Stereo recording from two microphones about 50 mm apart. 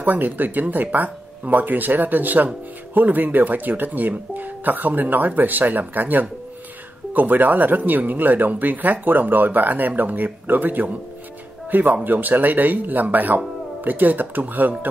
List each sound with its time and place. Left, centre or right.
0.0 s speech: right